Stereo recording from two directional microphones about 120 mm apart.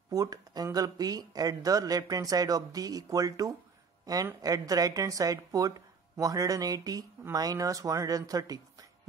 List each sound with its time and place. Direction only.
0.1 s speech: 30° right (ahead or behind)